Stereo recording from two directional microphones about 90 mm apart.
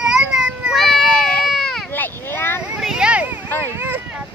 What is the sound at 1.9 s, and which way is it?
Vehicle, 20° left (ahead or behind).